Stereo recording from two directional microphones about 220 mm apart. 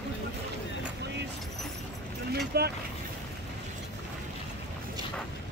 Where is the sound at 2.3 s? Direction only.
45° right (ahead or behind).